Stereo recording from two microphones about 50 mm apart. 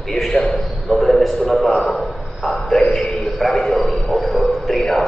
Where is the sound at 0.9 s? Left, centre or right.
Centre.